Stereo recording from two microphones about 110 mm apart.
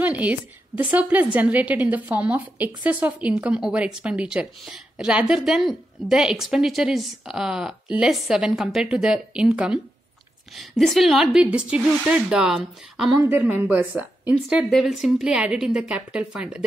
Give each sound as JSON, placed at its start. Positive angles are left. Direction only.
{"t": 0.0, "sound": "a woman's voice", "side_deg": -15}
{"t": 13.2, "sound": "a woman's voice", "side_deg": -20}
{"t": 14.5, "sound": "a woman's voice", "side_deg": 0}